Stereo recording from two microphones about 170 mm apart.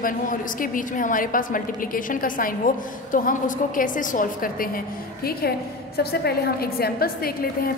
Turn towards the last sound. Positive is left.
turn(degrees=60)  # may be behind; listen again after turning